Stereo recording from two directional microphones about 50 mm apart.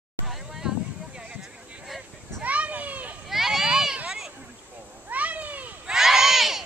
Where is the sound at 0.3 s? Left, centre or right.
Centre.